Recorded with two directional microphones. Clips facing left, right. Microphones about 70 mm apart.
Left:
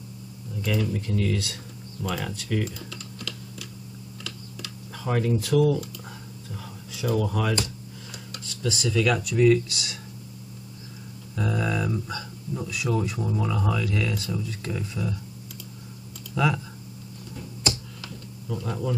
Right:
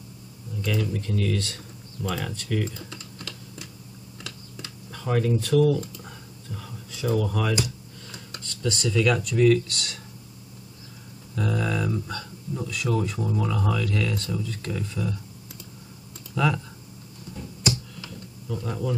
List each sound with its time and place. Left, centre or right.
0.6 s speech: centre
2.9 s typing: right
4.9 s speech: centre
6.0 s whispering: centre
7.2 s speech: centre
11.3 s speech: centre
16.3 s speech: centre
18.5 s speech: centre